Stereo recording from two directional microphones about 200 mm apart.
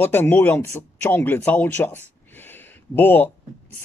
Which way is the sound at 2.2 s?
10° left (ahead or behind).